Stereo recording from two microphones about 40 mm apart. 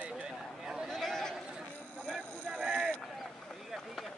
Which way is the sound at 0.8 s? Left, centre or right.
Centre.